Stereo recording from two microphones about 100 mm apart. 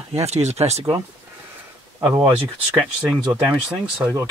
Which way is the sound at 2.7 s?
5° right (ahead or behind).